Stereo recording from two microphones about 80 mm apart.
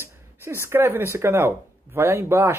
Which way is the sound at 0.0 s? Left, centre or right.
Right.